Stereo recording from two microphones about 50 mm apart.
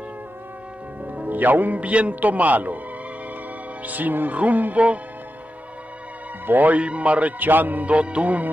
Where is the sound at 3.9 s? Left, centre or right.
Right.